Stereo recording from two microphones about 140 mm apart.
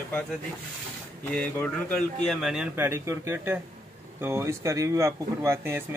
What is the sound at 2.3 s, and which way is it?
Speech, centre (ahead or behind).